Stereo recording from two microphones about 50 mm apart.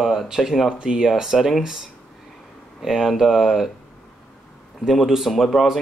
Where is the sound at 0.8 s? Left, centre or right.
Centre.